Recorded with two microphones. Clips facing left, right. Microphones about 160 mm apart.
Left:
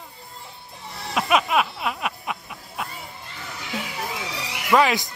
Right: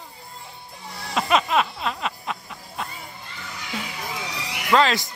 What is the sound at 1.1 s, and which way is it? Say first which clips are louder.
Music: even; 5° left (ahead or behind).